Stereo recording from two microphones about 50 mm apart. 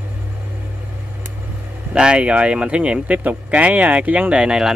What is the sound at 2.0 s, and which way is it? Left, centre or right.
Speech, centre.